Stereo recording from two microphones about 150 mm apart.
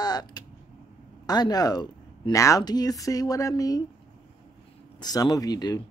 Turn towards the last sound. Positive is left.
turn(degrees=25)  # may be behind; listen again after turning